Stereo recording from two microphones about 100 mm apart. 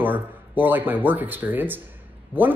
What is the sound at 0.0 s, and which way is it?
A woman's voice, 20° right (ahead or behind).